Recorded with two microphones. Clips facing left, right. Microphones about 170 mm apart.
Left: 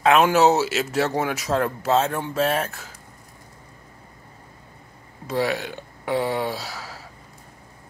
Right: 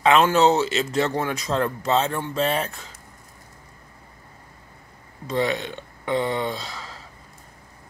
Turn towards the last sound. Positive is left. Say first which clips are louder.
# left 1 dB
turn(degrees=5)  # may be behind; listen again after turning